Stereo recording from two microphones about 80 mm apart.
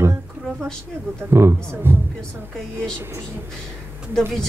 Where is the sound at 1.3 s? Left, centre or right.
Right.